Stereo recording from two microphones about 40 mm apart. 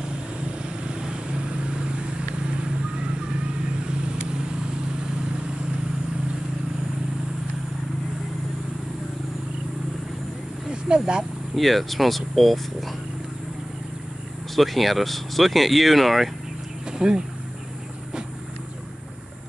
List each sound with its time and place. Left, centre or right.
0.4 s vehicle: right
10.9 s speech: right
11.5 s speech: centre
14.5 s speech: centre
17.0 s speech: centre